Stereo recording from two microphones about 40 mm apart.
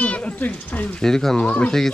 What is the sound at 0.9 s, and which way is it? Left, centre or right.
Speech, centre.